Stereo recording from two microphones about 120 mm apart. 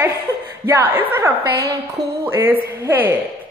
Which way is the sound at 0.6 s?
20° right (ahead or behind).